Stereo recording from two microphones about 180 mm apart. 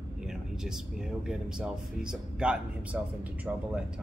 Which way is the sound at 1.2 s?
5° right (ahead or behind).